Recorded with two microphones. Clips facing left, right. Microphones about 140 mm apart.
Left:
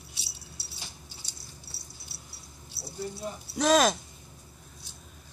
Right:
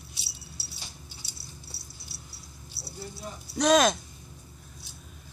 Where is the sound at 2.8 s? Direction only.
25° left (ahead or behind).